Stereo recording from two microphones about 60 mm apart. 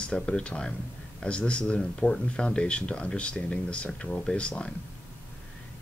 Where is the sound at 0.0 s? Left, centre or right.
Centre.